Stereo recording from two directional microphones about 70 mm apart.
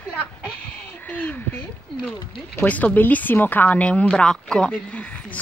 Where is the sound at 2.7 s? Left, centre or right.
Left.